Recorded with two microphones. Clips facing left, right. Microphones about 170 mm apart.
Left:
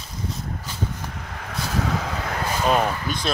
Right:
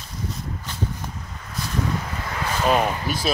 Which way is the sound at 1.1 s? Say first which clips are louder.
Left 2 dB; 85° left.